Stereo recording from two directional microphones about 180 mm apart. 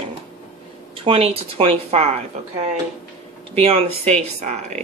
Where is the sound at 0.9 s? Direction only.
30° right (ahead or behind).